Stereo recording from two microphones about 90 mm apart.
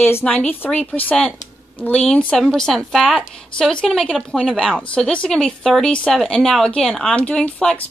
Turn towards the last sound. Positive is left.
turn(degrees=15)  # may be behind; listen again after turning